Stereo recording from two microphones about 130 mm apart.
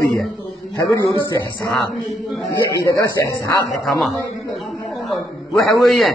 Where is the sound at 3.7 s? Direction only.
Centre (ahead or behind).